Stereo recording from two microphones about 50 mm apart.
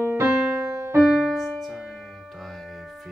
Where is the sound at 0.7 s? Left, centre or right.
Right.